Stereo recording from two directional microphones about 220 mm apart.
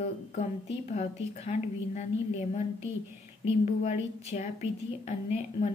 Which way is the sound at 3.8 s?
30° left (ahead or behind).